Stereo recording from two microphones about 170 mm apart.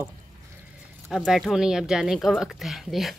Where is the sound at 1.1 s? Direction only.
Centre (ahead or behind).